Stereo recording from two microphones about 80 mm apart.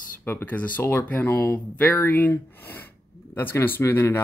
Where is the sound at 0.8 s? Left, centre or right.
Left.